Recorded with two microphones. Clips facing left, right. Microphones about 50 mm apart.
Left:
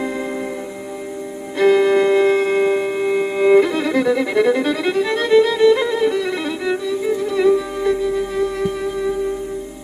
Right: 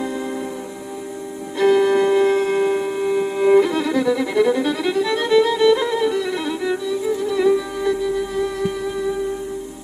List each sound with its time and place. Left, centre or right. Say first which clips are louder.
1.6 s music: left 2 dB; left
5.0 s violin: left 2 dB; left
7.2 s music: left 2 dB; left